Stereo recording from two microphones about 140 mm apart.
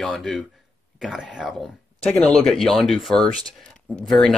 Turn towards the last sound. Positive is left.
turn(degrees=0)  # may be behind; listen again after turning